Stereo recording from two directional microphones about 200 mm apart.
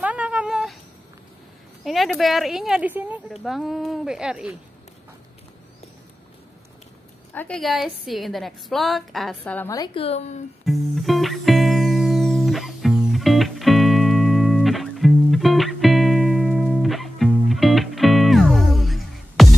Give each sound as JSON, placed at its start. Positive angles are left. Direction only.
{"t": 0.0, "sound": "a sound", "side_deg": -5}
{"t": 1.9, "sound": "a woman's voice", "side_deg": 0}
{"t": 7.3, "sound": "a woman's voice", "side_deg": 5}
{"t": 9.9, "sound": "speech", "side_deg": 30}
{"t": 10.6, "sound": "music", "side_deg": 0}